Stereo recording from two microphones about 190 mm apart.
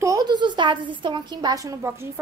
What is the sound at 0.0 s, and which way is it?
A woman's voice, 20° right (ahead or behind).